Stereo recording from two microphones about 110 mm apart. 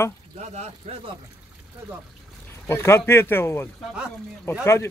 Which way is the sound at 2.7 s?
25° left (ahead or behind).